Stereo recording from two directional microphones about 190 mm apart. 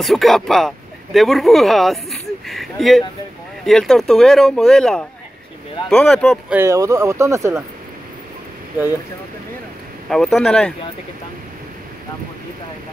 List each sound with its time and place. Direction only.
0.0 s speech: centre (ahead or behind)
6.5 s speech: 15° right (ahead or behind)
10.0 s speech: centre (ahead or behind)